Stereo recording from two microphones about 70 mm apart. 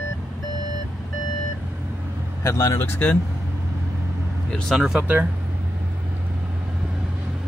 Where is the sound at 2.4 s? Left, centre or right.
Left.